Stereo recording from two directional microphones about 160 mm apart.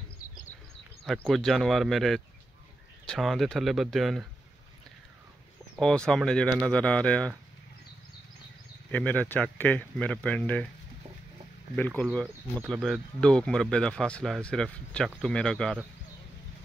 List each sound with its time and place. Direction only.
0.2 s bird: 55° left (ahead or behind)
1.0 s speech: centre (ahead or behind)
5.8 s speech: 5° left (ahead or behind)
8.9 s speech: 10° left (ahead or behind)
11.7 s speech: 10° left (ahead or behind)